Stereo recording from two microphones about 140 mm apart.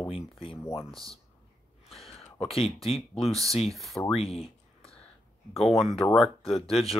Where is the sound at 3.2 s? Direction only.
Centre (ahead or behind).